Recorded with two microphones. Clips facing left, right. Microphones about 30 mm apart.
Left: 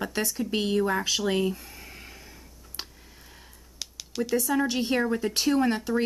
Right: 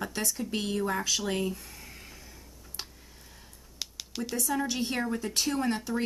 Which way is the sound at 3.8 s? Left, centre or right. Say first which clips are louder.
Left 5 dB; centre.